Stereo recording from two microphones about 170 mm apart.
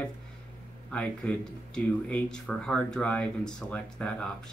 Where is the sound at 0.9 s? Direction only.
5° left (ahead or behind).